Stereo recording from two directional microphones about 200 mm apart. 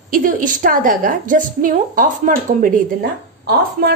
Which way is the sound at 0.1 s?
40° right (ahead or behind).